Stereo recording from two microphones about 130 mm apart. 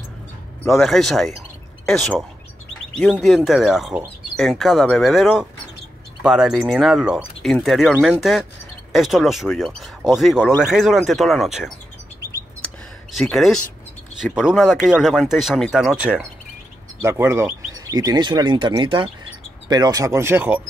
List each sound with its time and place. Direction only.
0.7 s speech: centre (ahead or behind)
13.2 s speech: centre (ahead or behind)
17.0 s speech: 20° right (ahead or behind)
17.9 s speech: 30° right (ahead or behind); by 20.6 s 15° right (ahead or behind)